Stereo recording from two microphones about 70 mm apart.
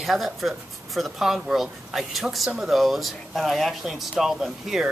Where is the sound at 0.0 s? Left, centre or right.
Centre.